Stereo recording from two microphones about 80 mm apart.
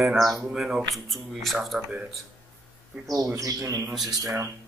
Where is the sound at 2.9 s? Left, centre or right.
Centre.